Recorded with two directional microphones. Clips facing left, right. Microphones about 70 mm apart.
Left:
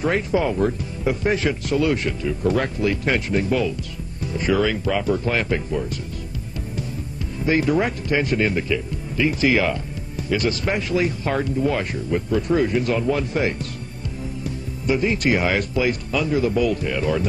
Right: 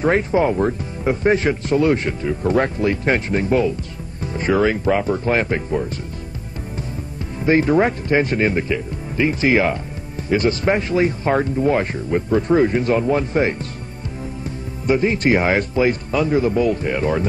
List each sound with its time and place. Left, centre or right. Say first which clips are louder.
0.0 s speech: right 4 dB; right
7.4 s speech: right 4 dB; right